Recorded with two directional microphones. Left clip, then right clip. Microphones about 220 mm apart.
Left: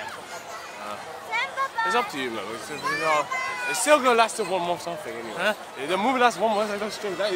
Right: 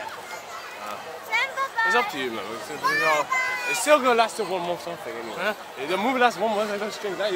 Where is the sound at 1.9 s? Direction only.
10° left (ahead or behind).